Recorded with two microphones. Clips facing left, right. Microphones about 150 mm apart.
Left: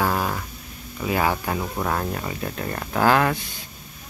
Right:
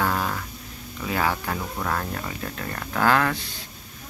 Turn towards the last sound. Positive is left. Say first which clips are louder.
# left 2 dB
turn(degrees=15)  # may be behind; listen again after turning